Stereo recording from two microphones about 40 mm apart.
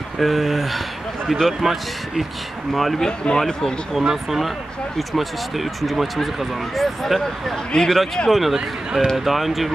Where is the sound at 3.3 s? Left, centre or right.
Centre.